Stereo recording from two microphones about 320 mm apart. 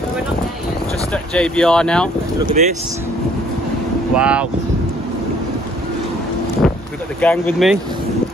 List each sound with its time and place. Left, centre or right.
1.1 s speech: centre
2.6 s speech: right
4.1 s speech: centre
7.2 s speech: centre